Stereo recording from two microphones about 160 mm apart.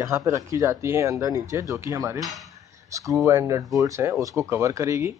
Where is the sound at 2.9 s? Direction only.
20° right (ahead or behind).